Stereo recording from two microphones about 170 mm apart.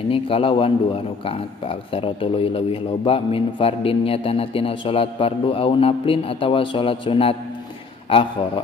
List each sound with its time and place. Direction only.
0.1 s a man's voice: 35° left (ahead or behind)